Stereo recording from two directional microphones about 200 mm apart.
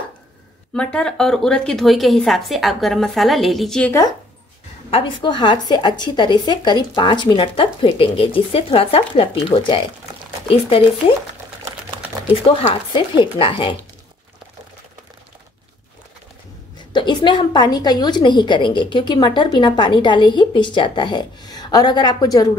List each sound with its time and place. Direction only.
0.7 s speech: 5° left (ahead or behind)
4.9 s a woman's voice: 25° left (ahead or behind)
12.4 s a woman's voice: 25° left (ahead or behind)
16.9 s a woman's voice: 20° left (ahead or behind)